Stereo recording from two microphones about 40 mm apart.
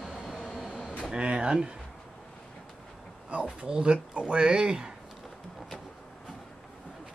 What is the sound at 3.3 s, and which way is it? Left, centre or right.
Speech, right.